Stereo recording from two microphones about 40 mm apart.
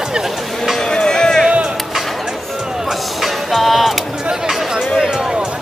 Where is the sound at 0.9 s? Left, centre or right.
Centre.